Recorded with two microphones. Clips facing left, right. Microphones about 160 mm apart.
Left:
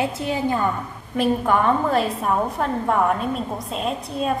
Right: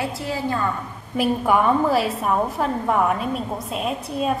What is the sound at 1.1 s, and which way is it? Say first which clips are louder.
A woman's voice: even; 10° right (ahead or behind).